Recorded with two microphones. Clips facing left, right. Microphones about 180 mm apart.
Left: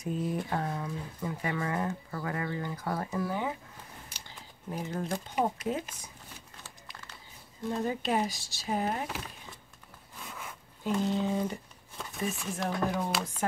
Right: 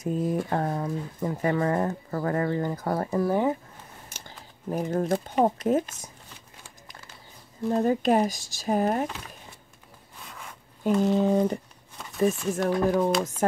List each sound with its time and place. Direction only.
0.0 s speech: 45° right (ahead or behind)
7.8 s speech: 45° right (ahead or behind)
10.8 s speech: 55° right (ahead or behind)
12.6 s speech: 55° right (ahead or behind)